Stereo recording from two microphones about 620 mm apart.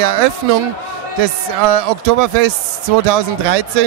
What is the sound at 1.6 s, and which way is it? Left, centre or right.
Speech, right.